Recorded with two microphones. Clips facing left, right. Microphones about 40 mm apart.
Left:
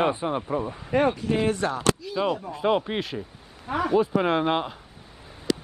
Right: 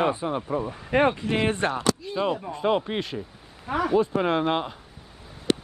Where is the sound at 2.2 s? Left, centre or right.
Centre.